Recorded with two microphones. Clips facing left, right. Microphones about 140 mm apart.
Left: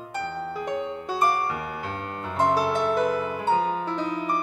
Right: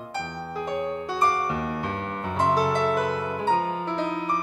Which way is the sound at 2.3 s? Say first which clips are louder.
Even; centre (ahead or behind).